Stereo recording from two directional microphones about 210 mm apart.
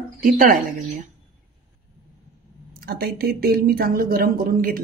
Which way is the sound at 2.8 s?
45° right (ahead or behind).